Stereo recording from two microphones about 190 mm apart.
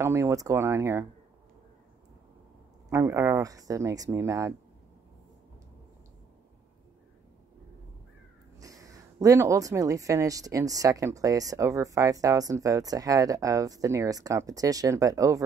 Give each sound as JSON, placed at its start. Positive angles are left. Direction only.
{"t": 0.0, "sound": "speech", "side_deg": -15}
{"t": 2.9, "sound": "speech", "side_deg": -15}
{"t": 8.5, "sound": "speech", "side_deg": -20}